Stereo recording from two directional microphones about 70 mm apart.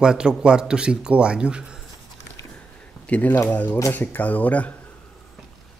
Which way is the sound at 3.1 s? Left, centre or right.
Left.